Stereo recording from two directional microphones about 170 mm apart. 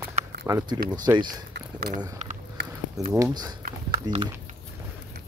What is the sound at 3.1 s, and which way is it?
Speech, 20° right (ahead or behind).